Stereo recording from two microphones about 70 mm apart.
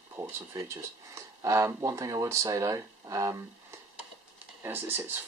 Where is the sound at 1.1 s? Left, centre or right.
Right.